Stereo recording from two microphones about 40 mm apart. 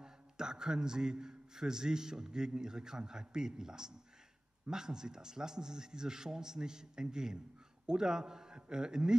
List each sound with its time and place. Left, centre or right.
0.0 s a man's voice: centre